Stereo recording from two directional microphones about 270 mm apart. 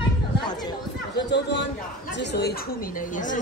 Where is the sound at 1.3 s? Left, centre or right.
Left.